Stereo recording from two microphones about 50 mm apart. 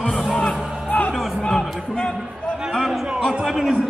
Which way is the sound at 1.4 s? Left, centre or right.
Centre.